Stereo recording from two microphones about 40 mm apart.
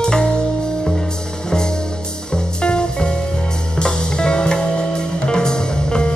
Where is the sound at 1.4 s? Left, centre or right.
Centre.